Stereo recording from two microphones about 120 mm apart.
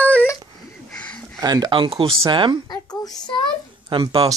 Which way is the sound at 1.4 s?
35° right (ahead or behind).